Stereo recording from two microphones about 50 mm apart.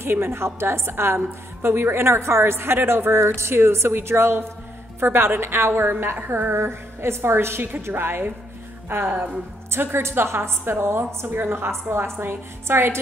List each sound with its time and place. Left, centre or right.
0.0 s a woman's voice: right